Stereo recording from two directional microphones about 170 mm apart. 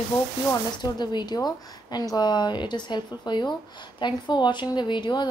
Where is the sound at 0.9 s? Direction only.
25° left (ahead or behind).